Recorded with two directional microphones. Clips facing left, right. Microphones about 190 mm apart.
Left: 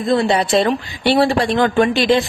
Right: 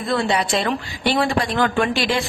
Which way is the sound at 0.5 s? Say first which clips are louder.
Left 6 dB; 30° left (ahead or behind).